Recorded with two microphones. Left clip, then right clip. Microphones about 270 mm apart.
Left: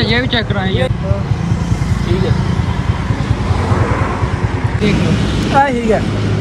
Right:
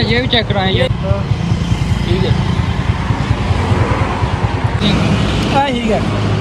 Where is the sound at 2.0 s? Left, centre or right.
Centre.